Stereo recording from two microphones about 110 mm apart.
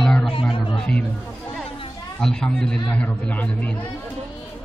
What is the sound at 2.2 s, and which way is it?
A man's voice, 5° left (ahead or behind).